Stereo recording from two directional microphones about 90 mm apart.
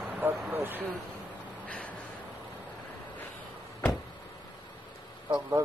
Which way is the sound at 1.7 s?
15° left (ahead or behind).